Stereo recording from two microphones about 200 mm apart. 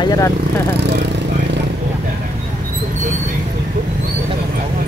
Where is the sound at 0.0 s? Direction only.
15° left (ahead or behind).